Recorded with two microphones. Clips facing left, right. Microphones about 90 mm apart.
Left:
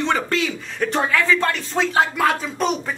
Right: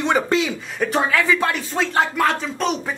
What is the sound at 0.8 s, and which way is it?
Speech, 5° right (ahead or behind).